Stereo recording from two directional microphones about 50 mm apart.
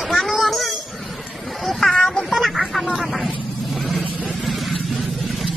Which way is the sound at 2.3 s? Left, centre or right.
Centre.